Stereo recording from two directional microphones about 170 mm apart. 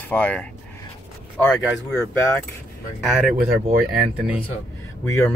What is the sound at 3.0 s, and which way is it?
Speech, centre (ahead or behind).